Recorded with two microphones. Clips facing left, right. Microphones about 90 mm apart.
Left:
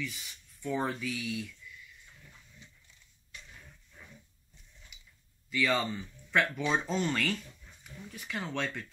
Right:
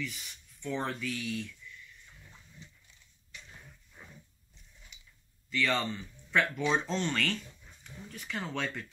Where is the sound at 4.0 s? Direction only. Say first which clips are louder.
Right 1 dB; 20° right (ahead or behind).